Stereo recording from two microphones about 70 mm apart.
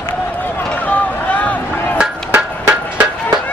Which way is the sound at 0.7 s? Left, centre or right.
Left.